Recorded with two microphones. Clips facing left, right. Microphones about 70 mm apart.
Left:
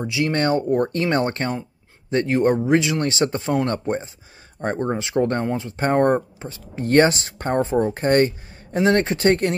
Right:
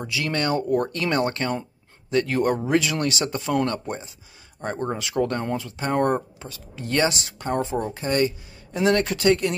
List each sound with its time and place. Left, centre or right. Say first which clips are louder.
0.0 s speech: left 5 dB; left
5.8 s speech: left 5 dB; left
9.3 s speech: even; left